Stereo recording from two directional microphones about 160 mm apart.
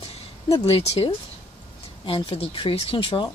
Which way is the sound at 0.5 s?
40° left (ahead or behind).